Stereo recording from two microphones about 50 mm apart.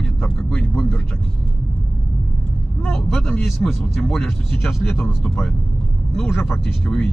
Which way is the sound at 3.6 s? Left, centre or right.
Left.